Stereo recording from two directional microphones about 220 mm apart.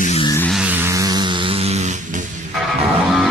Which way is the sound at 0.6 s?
10° right (ahead or behind).